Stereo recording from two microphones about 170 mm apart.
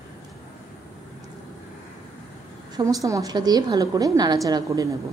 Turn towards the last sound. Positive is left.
turn(degrees=-20)  # may be behind; listen again after turning